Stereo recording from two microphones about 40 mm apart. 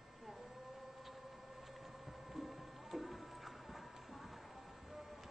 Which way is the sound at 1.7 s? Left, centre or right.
Centre.